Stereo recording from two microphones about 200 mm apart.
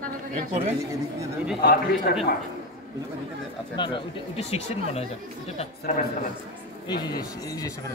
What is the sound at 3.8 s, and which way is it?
Speech, 25° left (ahead or behind).